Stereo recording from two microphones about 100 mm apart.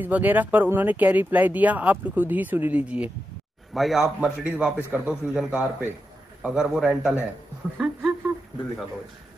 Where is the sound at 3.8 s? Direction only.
Centre (ahead or behind).